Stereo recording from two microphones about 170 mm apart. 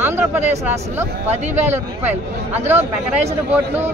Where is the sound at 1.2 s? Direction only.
40° right (ahead or behind).